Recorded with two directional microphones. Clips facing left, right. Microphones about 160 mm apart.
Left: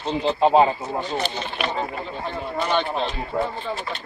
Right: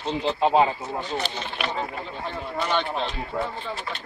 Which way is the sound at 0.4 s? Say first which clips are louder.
Left 3 dB; 35° left (ahead or behind).